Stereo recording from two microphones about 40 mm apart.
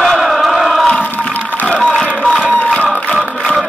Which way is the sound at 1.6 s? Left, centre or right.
Left.